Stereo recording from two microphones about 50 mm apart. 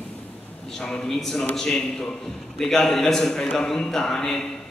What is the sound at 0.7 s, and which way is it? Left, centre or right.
A man's voice, centre.